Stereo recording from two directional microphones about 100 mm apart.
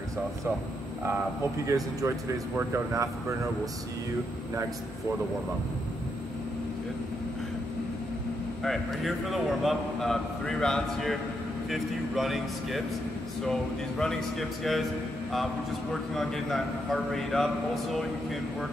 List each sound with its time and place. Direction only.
1.7 s speech: 30° right (ahead or behind)
8.6 s a man's voice: centre (ahead or behind)